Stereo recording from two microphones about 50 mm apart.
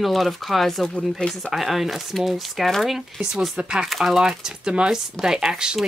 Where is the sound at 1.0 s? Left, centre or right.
Centre.